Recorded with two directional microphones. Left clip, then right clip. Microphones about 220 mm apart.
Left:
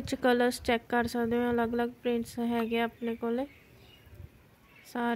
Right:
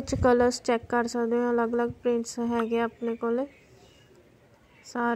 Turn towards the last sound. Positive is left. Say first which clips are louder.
# right 4 dB
turn(degrees=10)  # may be behind; listen again after turning